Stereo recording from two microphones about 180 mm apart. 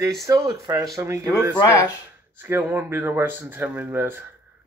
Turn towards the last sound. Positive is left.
turn(degrees=-10)  # may be behind; listen again after turning